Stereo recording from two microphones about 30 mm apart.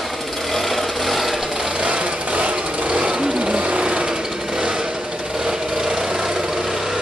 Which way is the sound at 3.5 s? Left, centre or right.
Right.